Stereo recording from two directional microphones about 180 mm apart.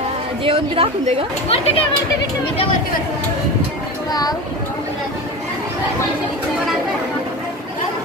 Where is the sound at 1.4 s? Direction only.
35° left (ahead or behind).